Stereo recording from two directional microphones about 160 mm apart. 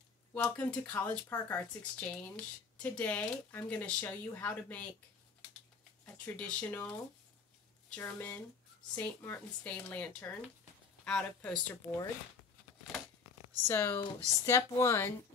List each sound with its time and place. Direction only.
0.3 s speech: 10° left (ahead or behind)
6.1 s speech: 5° left (ahead or behind)
7.9 s speech: 10° left (ahead or behind)
13.7 s speech: 15° left (ahead or behind)